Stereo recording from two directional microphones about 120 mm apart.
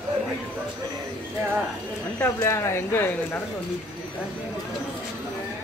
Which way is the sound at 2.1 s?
20° left (ahead or behind).